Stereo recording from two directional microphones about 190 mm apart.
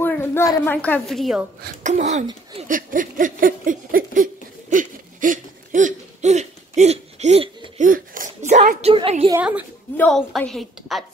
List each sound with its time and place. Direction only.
0.0 s a woman's voice: 10° left (ahead or behind)
1.8 s speech: 40° right (ahead or behind)
2.7 s a sound: 45° right (ahead or behind); by 9.3 s 30° right (ahead or behind)
9.3 s a woman's voice: 10° right (ahead or behind)
9.9 s a woman's voice: 5° left (ahead or behind)